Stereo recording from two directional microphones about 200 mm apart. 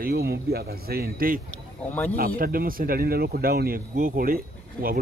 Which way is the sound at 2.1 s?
45° right (ahead or behind).